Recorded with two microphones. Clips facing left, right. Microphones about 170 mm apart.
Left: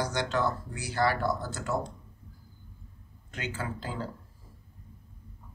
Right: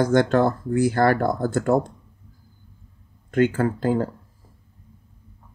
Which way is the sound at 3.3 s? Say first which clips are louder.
Right 16 dB; 55° right (ahead or behind).